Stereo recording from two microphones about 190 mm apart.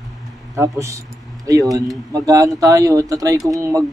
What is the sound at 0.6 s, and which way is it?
A man's voice, 15° right (ahead or behind).